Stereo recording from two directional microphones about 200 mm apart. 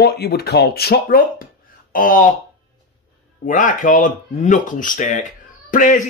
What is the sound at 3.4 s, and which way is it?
Speech, 40° left (ahead or behind).